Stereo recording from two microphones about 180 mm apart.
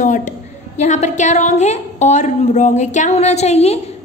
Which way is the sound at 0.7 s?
40° left (ahead or behind).